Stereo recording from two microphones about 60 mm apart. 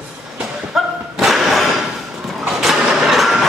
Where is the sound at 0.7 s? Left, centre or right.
Centre.